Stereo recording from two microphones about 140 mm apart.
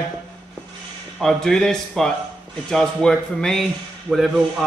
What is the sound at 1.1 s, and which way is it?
A man's voice, 5° left (ahead or behind).